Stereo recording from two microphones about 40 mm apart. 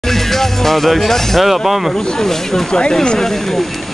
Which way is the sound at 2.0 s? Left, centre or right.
Centre.